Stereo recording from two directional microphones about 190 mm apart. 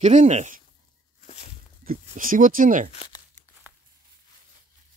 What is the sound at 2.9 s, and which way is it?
Crumpling, 30° left (ahead or behind).